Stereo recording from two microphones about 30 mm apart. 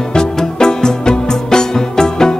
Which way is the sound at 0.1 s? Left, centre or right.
Left.